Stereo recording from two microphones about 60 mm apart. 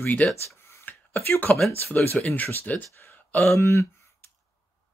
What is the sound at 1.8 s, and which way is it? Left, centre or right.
Speech, left.